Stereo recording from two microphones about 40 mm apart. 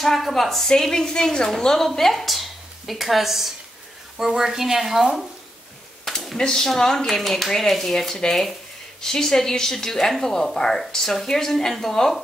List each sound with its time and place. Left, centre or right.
0.0 s a woman's voice: centre
0.7 s a woman's voice: centre
6.0 s a sound: centre
6.3 s a woman's voice: centre